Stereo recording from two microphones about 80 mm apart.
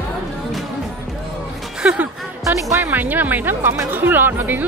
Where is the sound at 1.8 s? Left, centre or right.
Centre.